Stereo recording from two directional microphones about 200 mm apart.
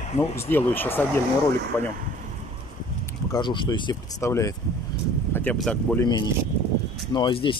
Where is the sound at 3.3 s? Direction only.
25° left (ahead or behind); by 6.0 s 5° left (ahead or behind).